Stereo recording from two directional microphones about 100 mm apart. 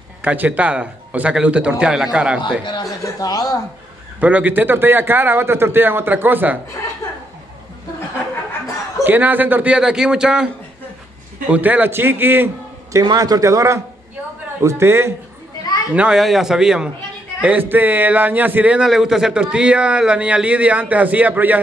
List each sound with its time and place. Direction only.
0.2 s a man's voice: 15° right (ahead or behind)
2.4 s speech: 50° left (ahead or behind)
2.8 s speech: 35° left (ahead or behind)
4.2 s a man's voice: 15° right (ahead or behind)
9.0 s a man's voice: 20° right (ahead or behind)
11.5 s a man's voice: 15° right (ahead or behind)
13.0 s a man's voice: 40° right (ahead or behind); by 15.1 s 25° right (ahead or behind)
15.9 s a man's voice: 10° right (ahead or behind)